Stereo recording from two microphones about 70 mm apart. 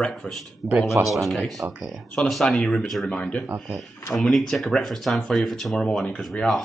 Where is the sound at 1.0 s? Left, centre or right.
Centre.